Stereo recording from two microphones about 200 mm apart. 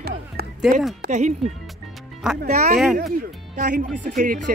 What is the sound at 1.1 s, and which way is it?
Speech, 35° right (ahead or behind).